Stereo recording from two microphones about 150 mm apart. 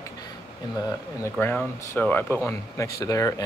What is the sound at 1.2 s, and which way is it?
Speech, 15° left (ahead or behind).